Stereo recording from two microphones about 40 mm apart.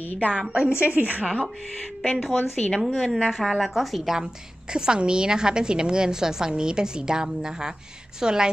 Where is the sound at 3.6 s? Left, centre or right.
Centre.